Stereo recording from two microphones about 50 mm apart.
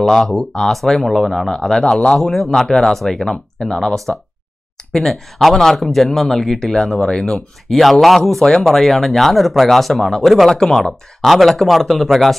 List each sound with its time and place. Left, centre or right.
0.0 s speech: centre
1.5 s speech: centre
7.3 s speech: centre